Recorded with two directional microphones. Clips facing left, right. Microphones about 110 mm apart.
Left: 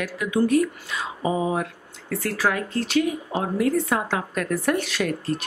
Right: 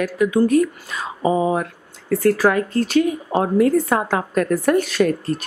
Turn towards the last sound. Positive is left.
turn(degrees=-45)  # may be behind; listen again after turning